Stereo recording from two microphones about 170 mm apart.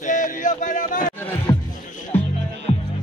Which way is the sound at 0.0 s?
50° left (ahead or behind).